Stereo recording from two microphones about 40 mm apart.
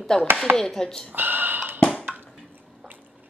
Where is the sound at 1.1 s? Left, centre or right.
Right.